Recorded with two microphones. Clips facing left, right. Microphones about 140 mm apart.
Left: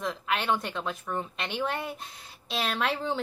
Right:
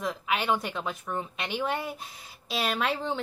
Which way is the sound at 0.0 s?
5° right (ahead or behind).